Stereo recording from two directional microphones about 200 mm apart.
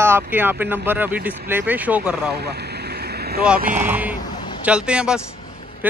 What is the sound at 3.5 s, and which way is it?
Speech, 40° right (ahead or behind).